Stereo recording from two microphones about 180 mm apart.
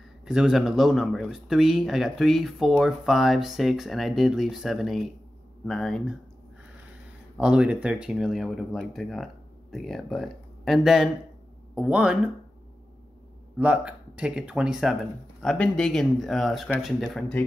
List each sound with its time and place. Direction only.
0.2 s speech: 5° right (ahead or behind)
7.3 s speech: 5° right (ahead or behind)
13.6 s speech: 5° right (ahead or behind)